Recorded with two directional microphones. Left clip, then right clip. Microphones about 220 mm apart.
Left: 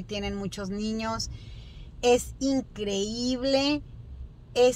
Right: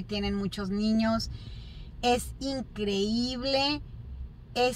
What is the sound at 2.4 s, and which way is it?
Speech, 15° left (ahead or behind).